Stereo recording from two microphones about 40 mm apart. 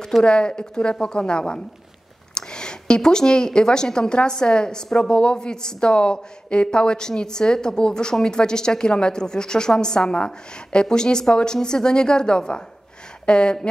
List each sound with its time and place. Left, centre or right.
0.2 s a woman's voice: left